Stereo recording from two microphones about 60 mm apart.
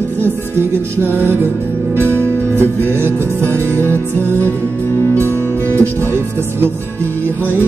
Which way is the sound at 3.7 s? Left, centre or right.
Left.